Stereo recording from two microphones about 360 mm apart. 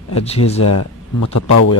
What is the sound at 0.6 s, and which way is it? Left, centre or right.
Speech, left.